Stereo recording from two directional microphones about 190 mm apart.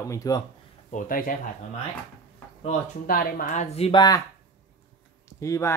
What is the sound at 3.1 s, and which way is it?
Speech, 50° left (ahead or behind).